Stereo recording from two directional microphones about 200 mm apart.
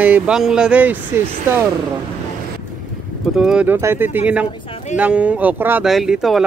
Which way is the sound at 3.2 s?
Centre (ahead or behind).